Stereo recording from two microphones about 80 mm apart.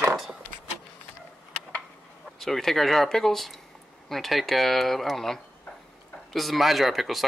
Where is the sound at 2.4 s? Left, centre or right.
Centre.